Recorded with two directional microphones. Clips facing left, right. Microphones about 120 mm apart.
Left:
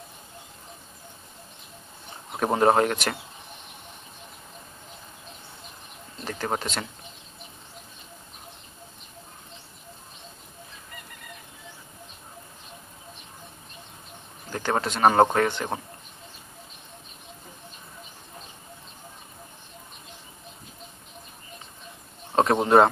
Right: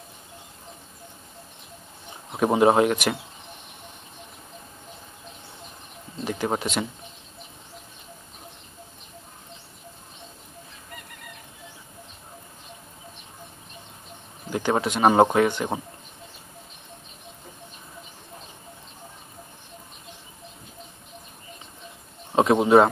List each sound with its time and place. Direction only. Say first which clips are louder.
2.4 s speech: right 2 dB; 10° right (ahead or behind)
6.2 s a sound: right 4 dB; 15° right (ahead or behind)
6.5 s speech: right 3 dB; 10° right (ahead or behind)
14.5 s speech: right 3 dB; 10° right (ahead or behind)
22.3 s speech: right 2 dB; 5° right (ahead or behind)